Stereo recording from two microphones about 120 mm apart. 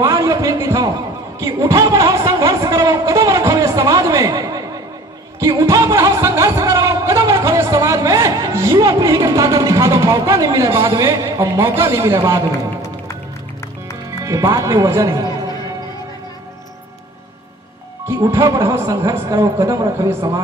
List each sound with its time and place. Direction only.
0.0 s a sound: 30° right (ahead or behind)
5.4 s music: 30° right (ahead or behind)
14.2 s speech: 30° right (ahead or behind)
18.0 s speech: 20° right (ahead or behind)